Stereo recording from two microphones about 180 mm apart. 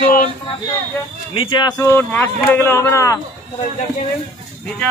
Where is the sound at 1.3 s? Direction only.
25° left (ahead or behind).